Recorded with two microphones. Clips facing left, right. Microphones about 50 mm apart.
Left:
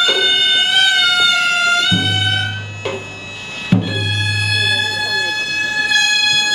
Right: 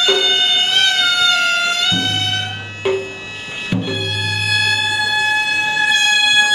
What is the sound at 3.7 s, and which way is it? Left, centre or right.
Music, centre.